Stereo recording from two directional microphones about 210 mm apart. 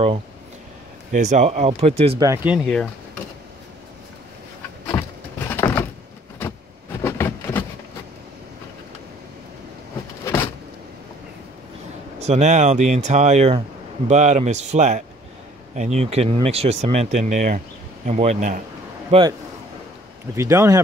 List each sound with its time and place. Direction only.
1.1 s speech: 35° right (ahead or behind)
2.1 s speech: 15° right (ahead or behind); by 2.9 s centre (ahead or behind)
4.9 s a sound: 10° left (ahead or behind)
5.5 s door: 10° left (ahead or behind)
7.0 s a sound: 10° left (ahead or behind)
12.2 s speech: 30° right (ahead or behind)
20.3 s speech: 15° right (ahead or behind)